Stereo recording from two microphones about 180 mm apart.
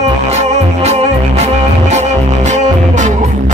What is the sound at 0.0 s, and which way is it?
Music, 35° right (ahead or behind).